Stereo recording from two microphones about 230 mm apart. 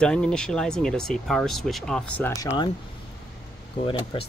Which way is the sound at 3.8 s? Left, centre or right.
Left.